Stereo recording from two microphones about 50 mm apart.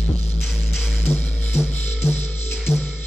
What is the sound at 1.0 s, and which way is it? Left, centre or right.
Music, left.